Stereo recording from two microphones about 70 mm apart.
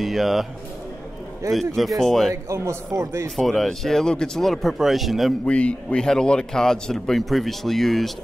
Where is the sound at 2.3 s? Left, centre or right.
Right.